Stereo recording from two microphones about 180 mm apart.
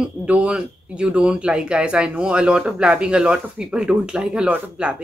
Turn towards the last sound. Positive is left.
turn(degrees=-5)  # may be behind; listen again after turning